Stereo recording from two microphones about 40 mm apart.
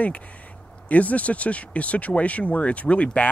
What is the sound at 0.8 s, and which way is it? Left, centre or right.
A man's voice, left.